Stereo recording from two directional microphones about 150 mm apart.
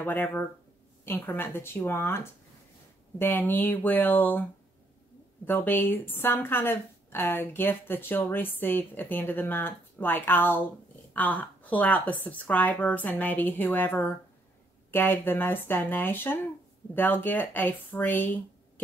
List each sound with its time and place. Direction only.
0.0 s a woman's voice: 15° left (ahead or behind)